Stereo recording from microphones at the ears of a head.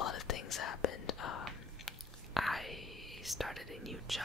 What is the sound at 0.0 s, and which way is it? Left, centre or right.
Whispering, left.